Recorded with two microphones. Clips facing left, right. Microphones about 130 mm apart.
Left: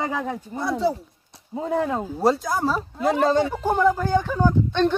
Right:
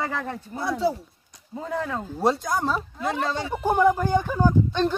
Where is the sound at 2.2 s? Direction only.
Centre (ahead or behind).